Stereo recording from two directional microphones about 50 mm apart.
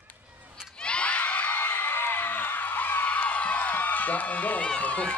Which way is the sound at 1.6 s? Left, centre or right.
Left.